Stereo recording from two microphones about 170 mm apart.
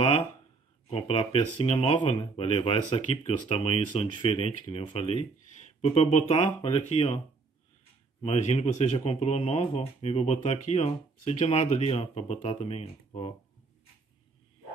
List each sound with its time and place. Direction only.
0.8 s speech: 35° left (ahead or behind)
8.2 s speech: 40° left (ahead or behind)